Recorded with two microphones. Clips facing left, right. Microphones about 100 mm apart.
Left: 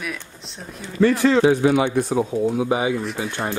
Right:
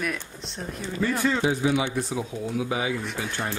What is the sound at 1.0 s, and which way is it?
Speech, 85° left.